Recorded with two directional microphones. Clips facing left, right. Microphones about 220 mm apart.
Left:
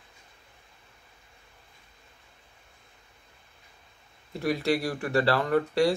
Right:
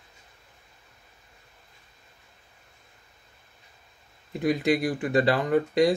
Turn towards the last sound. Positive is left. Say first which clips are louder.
# right 2 dB
turn(degrees=-15)  # may be behind; listen again after turning